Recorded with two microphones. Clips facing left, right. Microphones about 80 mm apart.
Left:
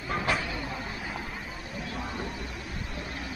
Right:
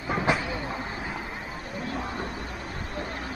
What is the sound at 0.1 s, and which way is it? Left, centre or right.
Train, centre.